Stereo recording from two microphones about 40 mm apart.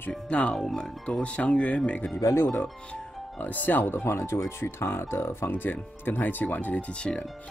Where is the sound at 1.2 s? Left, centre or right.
Left.